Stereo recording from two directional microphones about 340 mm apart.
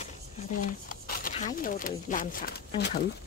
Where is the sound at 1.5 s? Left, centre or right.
Left.